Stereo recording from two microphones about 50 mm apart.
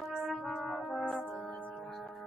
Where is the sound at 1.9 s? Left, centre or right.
Centre.